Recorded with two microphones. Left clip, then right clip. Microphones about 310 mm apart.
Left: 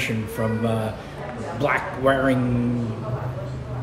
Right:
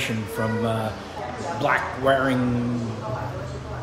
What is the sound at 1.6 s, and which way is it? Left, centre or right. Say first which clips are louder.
Speech: left 1 dB; centre.